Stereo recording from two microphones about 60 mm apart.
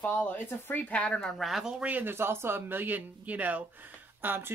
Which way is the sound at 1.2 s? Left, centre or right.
Centre.